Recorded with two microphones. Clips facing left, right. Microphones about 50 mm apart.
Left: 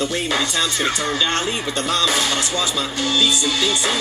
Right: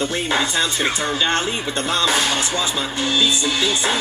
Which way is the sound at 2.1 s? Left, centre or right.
Right.